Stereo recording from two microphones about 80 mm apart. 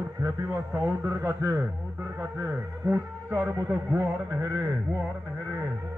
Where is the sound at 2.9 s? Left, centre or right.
Right.